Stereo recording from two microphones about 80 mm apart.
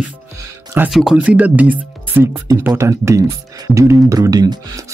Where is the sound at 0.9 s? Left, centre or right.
Centre.